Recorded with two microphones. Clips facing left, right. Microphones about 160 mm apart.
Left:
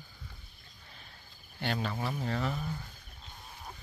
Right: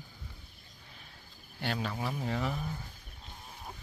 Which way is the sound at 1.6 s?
5° right (ahead or behind).